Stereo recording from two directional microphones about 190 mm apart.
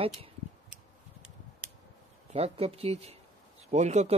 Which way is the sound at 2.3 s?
35° right (ahead or behind).